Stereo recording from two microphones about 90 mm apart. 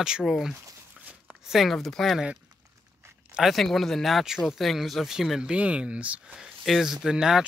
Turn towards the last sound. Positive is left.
turn(degrees=-5)  # may be behind; listen again after turning